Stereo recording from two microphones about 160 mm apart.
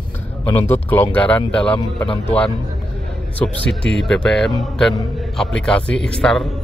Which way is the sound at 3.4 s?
5° left (ahead or behind).